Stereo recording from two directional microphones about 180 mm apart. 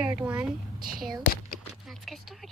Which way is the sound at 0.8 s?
50° right (ahead or behind).